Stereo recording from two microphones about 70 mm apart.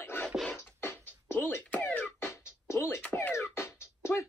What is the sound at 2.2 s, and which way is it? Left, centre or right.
Music, left.